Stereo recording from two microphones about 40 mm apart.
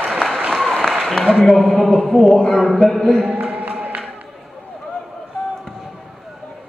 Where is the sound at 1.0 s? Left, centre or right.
Centre.